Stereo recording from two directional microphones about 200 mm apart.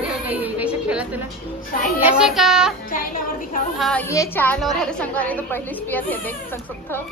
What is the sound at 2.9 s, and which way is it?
Speech, 45° left (ahead or behind).